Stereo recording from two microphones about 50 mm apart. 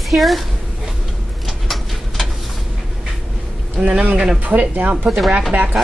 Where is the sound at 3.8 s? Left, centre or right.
Right.